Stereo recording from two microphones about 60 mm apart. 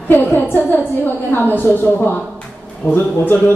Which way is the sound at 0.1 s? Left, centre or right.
Left.